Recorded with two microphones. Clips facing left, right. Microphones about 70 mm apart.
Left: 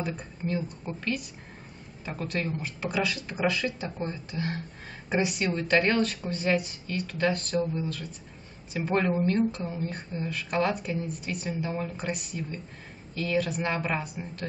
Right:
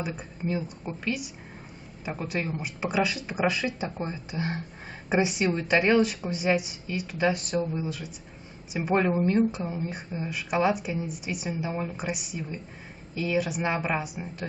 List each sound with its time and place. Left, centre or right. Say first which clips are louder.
0.0 s a woman's voice: even; centre